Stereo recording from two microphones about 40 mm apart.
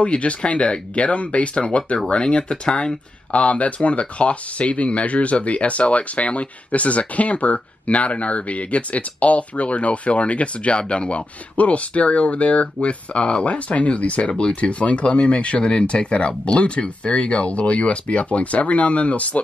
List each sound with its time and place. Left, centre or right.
0.0 s speech: left
3.3 s speech: left